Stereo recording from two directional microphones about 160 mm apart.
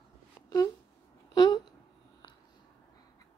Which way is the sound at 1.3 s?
25° left (ahead or behind).